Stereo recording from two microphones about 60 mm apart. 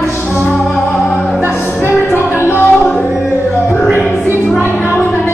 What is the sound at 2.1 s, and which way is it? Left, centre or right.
Music, left.